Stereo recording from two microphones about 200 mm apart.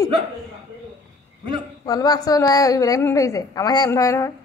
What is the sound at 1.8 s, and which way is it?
A woman's voice, 20° left (ahead or behind).